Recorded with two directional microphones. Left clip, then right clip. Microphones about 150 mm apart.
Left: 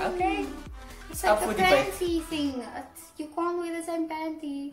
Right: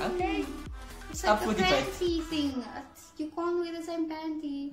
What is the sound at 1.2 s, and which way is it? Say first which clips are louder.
A child's voice: left 3 dB; 20° left (ahead or behind).